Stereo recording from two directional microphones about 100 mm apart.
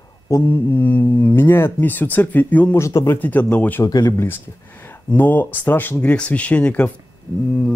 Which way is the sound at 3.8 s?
40° left (ahead or behind).